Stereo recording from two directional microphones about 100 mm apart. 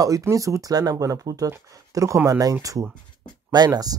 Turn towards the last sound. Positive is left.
turn(degrees=-40)  # may be behind; listen again after turning